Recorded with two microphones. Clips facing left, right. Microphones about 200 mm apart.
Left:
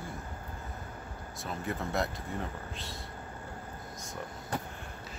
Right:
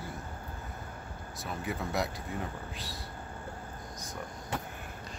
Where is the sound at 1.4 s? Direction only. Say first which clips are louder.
Even; centre (ahead or behind).